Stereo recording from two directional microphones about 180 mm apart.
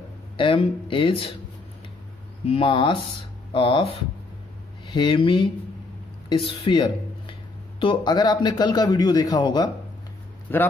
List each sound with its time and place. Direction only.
0.4 s speech: 30° left (ahead or behind)
2.4 s speech: 30° left (ahead or behind)
4.9 s speech: 30° left (ahead or behind)